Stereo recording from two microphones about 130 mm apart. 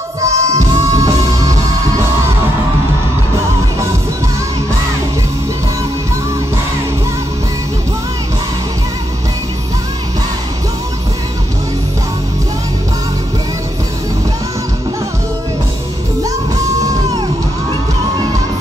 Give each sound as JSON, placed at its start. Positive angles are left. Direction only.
{"t": 0.2, "sound": "music", "side_deg": -25}